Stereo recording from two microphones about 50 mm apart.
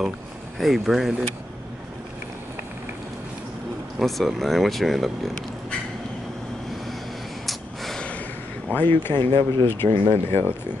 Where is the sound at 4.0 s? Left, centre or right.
Centre.